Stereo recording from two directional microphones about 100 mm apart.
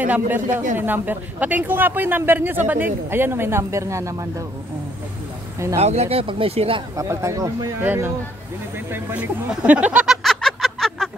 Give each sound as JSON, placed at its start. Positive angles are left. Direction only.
{"t": 0.0, "sound": "speech", "side_deg": -15}
{"t": 5.8, "sound": "speech", "side_deg": -90}
{"t": 7.0, "sound": "speech", "side_deg": -30}
{"t": 7.8, "sound": "speech", "side_deg": -20}
{"t": 10.2, "sound": "a sound", "side_deg": 5}